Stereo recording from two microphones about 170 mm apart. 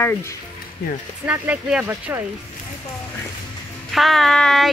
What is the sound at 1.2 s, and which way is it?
Speech, 10° right (ahead or behind).